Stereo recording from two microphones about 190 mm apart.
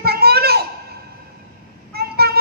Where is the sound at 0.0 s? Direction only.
55° right (ahead or behind).